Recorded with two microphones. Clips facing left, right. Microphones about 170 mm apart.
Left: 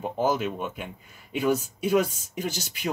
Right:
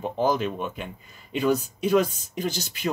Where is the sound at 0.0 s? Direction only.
10° left (ahead or behind).